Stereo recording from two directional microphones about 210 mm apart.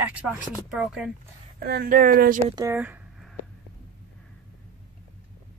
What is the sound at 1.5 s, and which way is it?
Speech, 45° right (ahead or behind).